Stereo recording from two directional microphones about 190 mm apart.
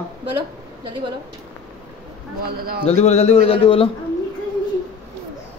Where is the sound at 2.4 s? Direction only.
55° right (ahead or behind).